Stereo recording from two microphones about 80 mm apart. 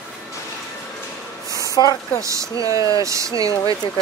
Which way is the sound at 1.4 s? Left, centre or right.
Right.